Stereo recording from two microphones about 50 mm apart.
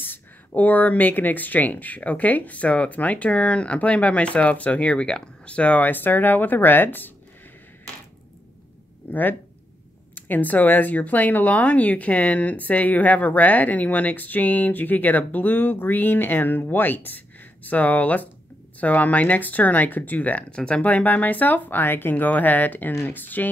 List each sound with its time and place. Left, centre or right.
0.0 s speech: left
9.1 s speech: left